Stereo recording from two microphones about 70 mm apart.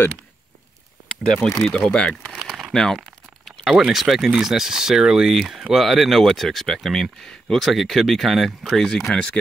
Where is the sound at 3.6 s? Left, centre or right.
Centre.